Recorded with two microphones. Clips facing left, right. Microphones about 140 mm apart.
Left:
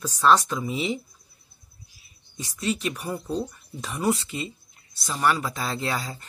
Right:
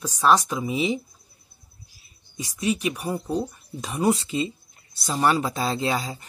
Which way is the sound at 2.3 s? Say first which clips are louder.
Right 3 dB; 15° right (ahead or behind).